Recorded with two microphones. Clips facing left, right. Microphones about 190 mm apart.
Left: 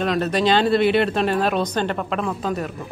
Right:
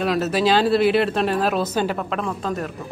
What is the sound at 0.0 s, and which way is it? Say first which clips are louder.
Speech: even; 5° right (ahead or behind).